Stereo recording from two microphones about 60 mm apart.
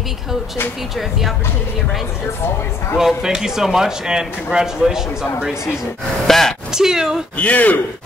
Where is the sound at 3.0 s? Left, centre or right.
Centre.